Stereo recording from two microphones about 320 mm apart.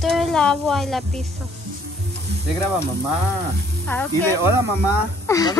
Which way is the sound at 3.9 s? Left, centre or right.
Centre.